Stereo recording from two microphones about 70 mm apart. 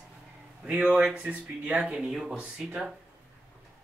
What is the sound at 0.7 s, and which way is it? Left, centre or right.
Speech, centre.